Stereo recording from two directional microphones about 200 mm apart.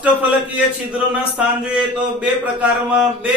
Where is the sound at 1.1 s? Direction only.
5° right (ahead or behind).